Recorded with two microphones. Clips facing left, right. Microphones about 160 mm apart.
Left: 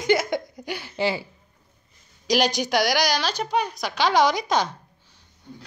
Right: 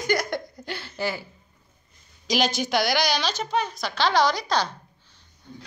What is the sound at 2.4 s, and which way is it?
A woman's voice, 15° left (ahead or behind).